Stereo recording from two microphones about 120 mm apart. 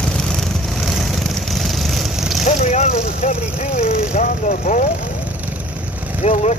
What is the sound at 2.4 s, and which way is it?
Speech, 75° left (ahead or behind).